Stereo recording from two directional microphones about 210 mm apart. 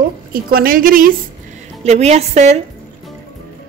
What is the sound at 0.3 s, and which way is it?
Speech, 45° right (ahead or behind).